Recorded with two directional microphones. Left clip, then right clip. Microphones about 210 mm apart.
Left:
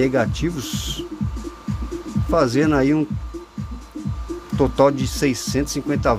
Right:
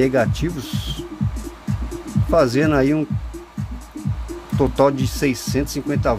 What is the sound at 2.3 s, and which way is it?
Speech, centre (ahead or behind).